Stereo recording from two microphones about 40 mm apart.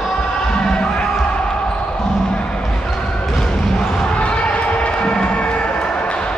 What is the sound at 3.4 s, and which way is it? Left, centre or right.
Basketball bounce, centre.